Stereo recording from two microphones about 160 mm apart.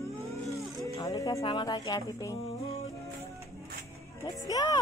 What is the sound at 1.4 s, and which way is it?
Speech, 30° left (ahead or behind).